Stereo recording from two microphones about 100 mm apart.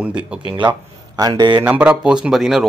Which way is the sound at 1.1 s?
45° right (ahead or behind).